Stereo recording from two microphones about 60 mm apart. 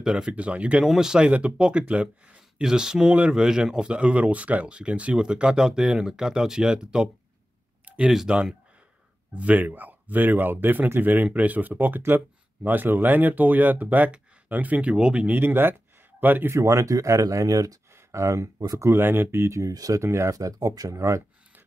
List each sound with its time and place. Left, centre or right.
0.0 s speech: centre
0.3 s speech: right
0.8 s speech: centre
9.3 s speech: right
15.3 s speech: right
16.4 s speech: right
17.9 s speech: right
18.8 s speech: right
19.5 s speech: right
20.0 s speech: right
20.2 s speech: right